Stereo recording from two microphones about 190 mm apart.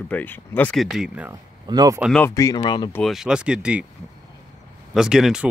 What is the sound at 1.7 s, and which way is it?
Speech, 20° right (ahead or behind).